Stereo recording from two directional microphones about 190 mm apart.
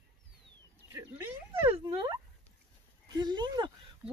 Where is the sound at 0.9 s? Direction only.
15° right (ahead or behind).